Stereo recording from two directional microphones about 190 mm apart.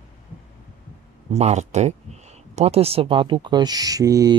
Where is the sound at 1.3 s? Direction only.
35° right (ahead or behind).